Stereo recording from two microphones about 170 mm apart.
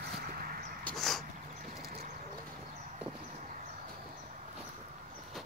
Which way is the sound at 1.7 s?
55° right (ahead or behind).